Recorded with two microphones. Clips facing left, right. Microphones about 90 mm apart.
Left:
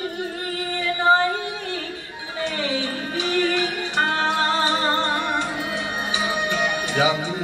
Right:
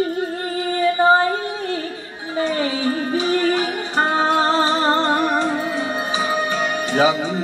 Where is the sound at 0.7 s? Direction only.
35° right (ahead or behind).